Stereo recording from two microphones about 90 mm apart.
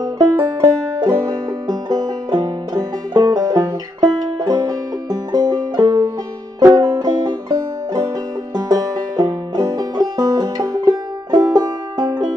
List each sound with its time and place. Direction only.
0.0 s music: 45° right (ahead or behind)